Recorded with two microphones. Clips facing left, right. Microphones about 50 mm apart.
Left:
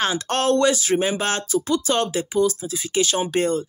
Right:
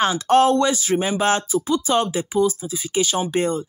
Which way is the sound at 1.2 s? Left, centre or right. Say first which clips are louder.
Right 3 dB; centre.